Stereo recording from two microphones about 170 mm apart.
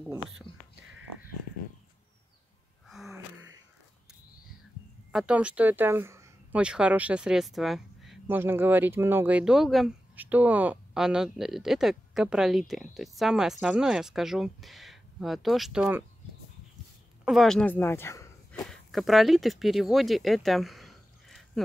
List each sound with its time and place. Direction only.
0.5 s speech: 30° left (ahead or behind)
2.9 s sneeze: centre (ahead or behind)
5.1 s speech: 5° right (ahead or behind)
8.4 s speech: 10° right (ahead or behind)
17.2 s speech: centre (ahead or behind); by 18.3 s 15° left (ahead or behind)
18.7 s speech: centre (ahead or behind)